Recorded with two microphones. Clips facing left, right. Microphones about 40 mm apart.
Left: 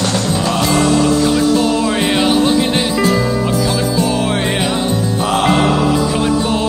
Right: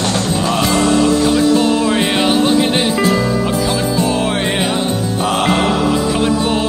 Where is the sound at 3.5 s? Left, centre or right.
Centre.